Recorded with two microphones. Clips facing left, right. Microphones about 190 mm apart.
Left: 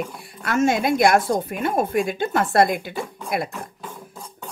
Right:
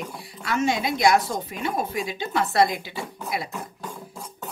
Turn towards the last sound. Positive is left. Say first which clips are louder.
# right 1 dB
turn(degrees=0)  # may be behind; listen again after turning